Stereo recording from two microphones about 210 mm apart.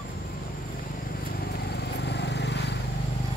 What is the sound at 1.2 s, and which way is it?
Vehicle, 45° left (ahead or behind).